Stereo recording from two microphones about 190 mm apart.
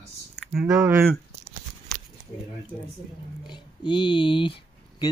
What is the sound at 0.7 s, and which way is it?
Speech, 15° right (ahead or behind).